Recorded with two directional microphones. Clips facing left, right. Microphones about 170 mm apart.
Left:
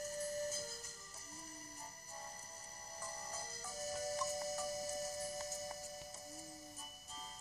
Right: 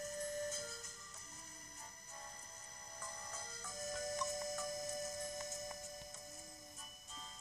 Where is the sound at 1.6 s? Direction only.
35° left (ahead or behind).